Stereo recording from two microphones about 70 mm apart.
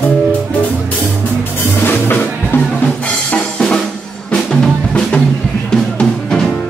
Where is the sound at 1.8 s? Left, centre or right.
Left.